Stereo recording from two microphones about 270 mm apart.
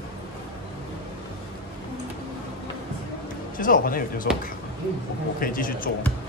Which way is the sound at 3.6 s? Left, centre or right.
Left.